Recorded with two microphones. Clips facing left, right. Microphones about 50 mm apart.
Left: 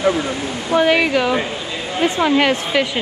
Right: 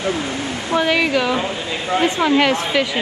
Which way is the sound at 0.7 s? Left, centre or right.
Centre.